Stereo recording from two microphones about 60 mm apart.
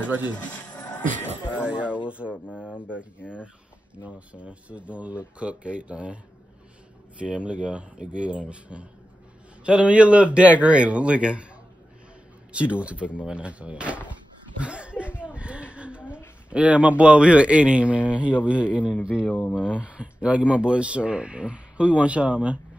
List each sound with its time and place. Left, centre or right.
0.4 s music: left
1.6 s speech: centre
3.9 s speech: right
7.2 s speech: centre
12.5 s speech: right
14.6 s a sound: centre
16.4 s speech: right
19.2 s speech: left
19.5 s speech: centre